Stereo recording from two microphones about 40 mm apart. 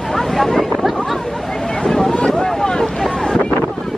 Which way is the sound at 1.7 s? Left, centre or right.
Centre.